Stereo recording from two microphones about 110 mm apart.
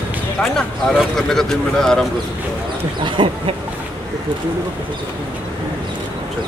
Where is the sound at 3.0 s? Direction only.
50° right (ahead or behind).